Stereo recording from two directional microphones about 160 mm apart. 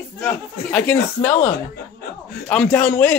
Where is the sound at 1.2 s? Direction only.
40° left (ahead or behind).